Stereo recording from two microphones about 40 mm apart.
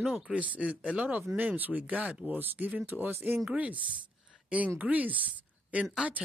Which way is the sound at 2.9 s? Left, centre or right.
Right.